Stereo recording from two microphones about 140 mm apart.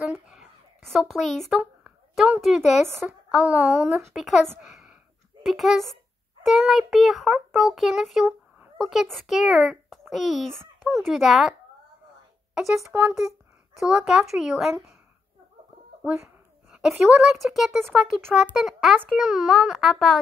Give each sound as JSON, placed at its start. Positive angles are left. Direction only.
{"t": 0.3, "sound": "a sound", "side_deg": 0}
{"t": 3.3, "sound": "a child's voice", "side_deg": -10}
{"t": 4.6, "sound": "a sound", "side_deg": -5}
{"t": 5.4, "sound": "a child's voice", "side_deg": 0}
{"t": 12.5, "sound": "a child's voice", "side_deg": 0}
{"t": 16.0, "sound": "speech", "side_deg": -15}
{"t": 16.7, "sound": "a child's voice", "side_deg": -5}